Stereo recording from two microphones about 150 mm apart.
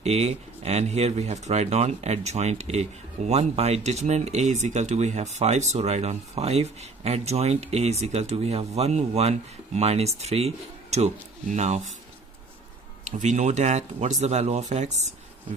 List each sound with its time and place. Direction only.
0.0 s speech: 45° right (ahead or behind)
13.0 s speech: 55° right (ahead or behind)